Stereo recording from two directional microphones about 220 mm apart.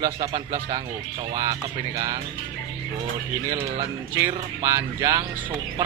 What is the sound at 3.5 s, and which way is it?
Speech, 15° right (ahead or behind).